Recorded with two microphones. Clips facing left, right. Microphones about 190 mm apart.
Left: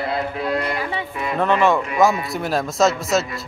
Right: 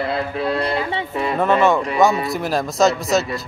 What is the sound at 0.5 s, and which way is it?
Speech, 30° right (ahead or behind).